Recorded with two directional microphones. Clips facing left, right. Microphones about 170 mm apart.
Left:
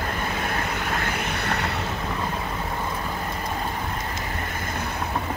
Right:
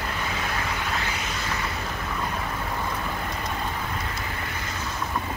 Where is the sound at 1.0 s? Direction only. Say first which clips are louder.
Left 4 dB; 55° left (ahead or behind).